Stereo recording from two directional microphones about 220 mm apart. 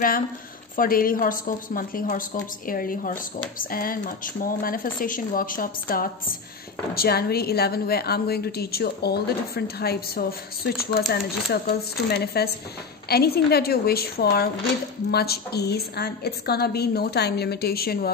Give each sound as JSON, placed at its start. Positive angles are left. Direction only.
{"t": 0.7, "sound": "a woman's voice", "side_deg": 40}